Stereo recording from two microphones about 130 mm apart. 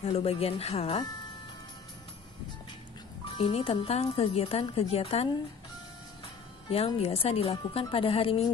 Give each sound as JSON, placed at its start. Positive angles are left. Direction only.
{"t": 0.0, "sound": "a woman's voice", "side_deg": 50}
{"t": 3.3, "sound": "a woman's voice", "side_deg": 45}
{"t": 7.0, "sound": "a woman's voice", "side_deg": 50}